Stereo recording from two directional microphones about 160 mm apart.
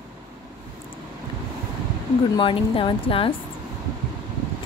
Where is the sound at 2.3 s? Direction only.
35° left (ahead or behind).